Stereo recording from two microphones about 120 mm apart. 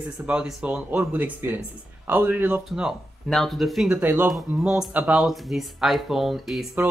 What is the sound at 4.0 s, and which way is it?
Speech, 15° right (ahead or behind).